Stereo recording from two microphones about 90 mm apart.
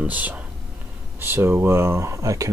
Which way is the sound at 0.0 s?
20° right (ahead or behind).